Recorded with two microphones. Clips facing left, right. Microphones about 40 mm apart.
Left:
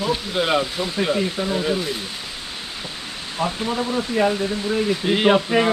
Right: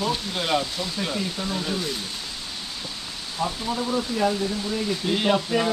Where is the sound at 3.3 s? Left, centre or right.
Left.